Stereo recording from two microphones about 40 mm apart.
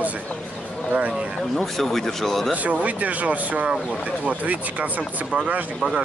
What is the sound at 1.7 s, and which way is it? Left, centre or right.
Speech, centre.